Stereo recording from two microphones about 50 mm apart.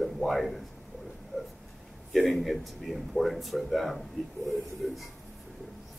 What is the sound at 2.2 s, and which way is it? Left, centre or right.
Speech, centre.